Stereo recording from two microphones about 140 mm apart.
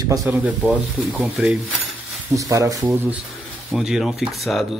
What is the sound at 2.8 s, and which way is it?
Speech, 15° right (ahead or behind).